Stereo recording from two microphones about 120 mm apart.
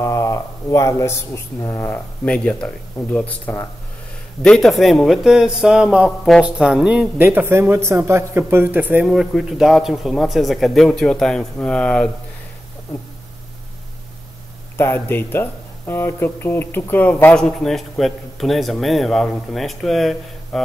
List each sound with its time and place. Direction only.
0.0 s speech: 25° left (ahead or behind)
2.2 s speech: 10° left (ahead or behind); by 7.2 s 10° right (ahead or behind)
7.2 s speech: 20° right (ahead or behind)
9.0 s speech: centre (ahead or behind)
14.8 s speech: 20° left (ahead or behind); by 20.6 s centre (ahead or behind)